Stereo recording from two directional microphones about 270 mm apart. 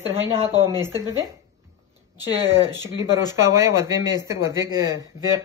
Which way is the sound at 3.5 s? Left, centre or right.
Centre.